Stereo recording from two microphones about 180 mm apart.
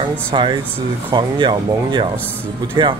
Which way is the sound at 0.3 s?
25° right (ahead or behind).